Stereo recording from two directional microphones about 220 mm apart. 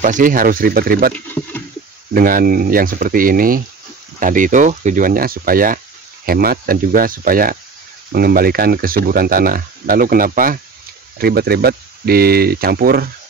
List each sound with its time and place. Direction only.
0.0 s speech: 35° right (ahead or behind)
1.1 s speech: 10° left (ahead or behind)
2.1 s speech: 40° right (ahead or behind)